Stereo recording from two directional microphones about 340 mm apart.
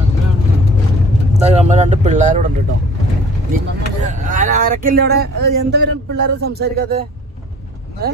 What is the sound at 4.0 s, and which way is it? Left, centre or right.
Speech, right.